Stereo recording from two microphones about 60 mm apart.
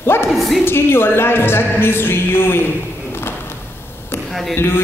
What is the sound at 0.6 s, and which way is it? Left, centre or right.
A woman's voice, left.